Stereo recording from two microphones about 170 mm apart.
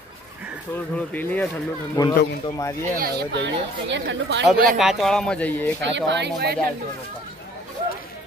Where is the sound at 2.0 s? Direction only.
20° left (ahead or behind).